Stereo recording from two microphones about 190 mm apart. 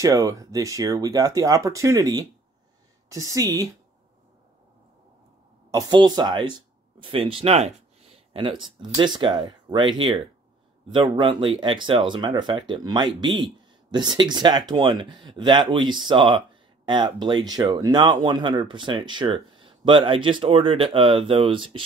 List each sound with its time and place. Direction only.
0.0 s speech: 15° right (ahead or behind)
5.7 s speech: 20° right (ahead or behind)